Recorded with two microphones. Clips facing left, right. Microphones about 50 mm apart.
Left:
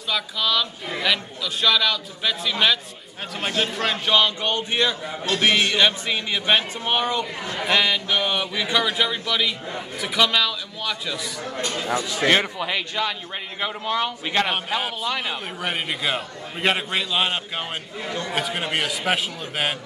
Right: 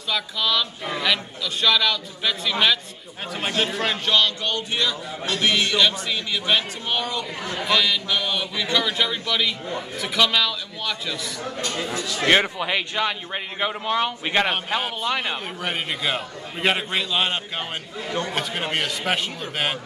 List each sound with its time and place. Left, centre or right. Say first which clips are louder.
0.1 s speech: even; centre
4.1 s a man's voice: left 2 dB; left; by 11.5 s centre
11.9 s a man's voice: left 3 dB; left
12.3 s a man's voice: right 2 dB; centre
14.5 s speech: even; centre
15.6 s speech: left 1 dB; centre